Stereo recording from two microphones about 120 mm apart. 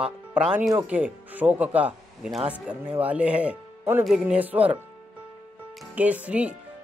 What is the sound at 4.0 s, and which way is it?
Speech, 5° right (ahead or behind).